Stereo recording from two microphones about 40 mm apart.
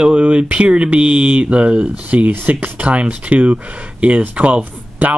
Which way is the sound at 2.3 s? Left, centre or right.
Right.